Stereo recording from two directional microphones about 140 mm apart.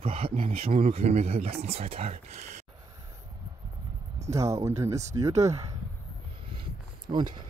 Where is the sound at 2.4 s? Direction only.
60° right (ahead or behind).